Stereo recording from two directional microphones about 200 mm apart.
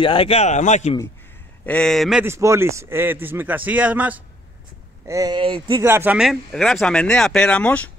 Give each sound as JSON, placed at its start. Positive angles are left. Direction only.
{"t": 0.0, "sound": "speech", "side_deg": 25}
{"t": 1.7, "sound": "a man's voice", "side_deg": 5}
{"t": 5.8, "sound": "speech", "side_deg": -10}